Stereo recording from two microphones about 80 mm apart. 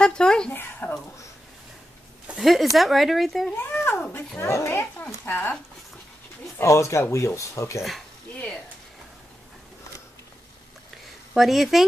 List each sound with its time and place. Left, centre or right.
0.0 s a sound: centre
0.5 s speech: left
2.3 s speech: centre
4.4 s speech: left
6.6 s speech: left
11.3 s speech: centre